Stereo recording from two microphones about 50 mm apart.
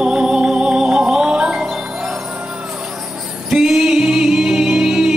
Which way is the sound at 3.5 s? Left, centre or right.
Centre.